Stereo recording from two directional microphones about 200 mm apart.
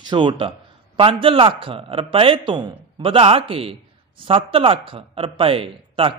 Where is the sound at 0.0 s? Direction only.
25° right (ahead or behind).